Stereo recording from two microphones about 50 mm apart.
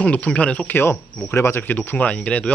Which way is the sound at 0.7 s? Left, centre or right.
Left.